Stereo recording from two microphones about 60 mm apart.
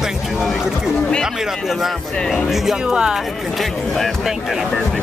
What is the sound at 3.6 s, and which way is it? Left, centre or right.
Speech, centre.